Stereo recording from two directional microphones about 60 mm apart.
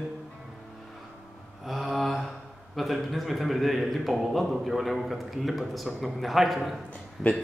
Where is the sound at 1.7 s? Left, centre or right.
Centre.